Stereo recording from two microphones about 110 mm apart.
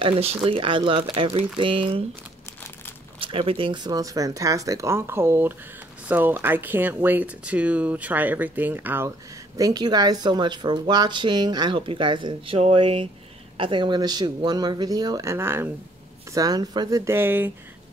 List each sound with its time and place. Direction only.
0.0 s speech: 65° right (ahead or behind)
0.5 s speech: 55° right (ahead or behind)
3.2 s speech: 55° right (ahead or behind); by 9.1 s 20° right (ahead or behind)
9.6 s speech: 35° right (ahead or behind)
12.5 s speech: 65° right (ahead or behind); by 15.7 s 20° right (ahead or behind)
16.3 s speech: 35° right (ahead or behind)
17.1 s speech: 20° right (ahead or behind)